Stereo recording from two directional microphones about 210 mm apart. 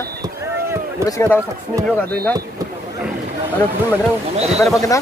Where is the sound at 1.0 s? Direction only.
15° left (ahead or behind).